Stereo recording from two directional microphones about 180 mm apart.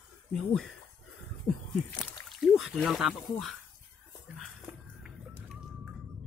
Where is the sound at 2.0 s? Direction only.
Centre (ahead or behind).